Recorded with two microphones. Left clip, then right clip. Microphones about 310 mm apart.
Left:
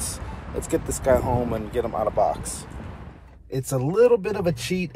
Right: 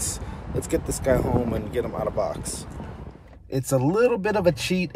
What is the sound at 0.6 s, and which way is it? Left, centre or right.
Speech, centre.